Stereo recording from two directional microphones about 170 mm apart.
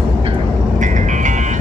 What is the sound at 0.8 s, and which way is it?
Music, 45° right (ahead or behind).